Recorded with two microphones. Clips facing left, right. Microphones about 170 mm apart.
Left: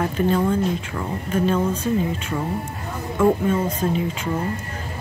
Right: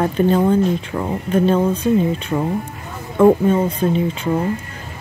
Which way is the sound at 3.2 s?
30° right (ahead or behind).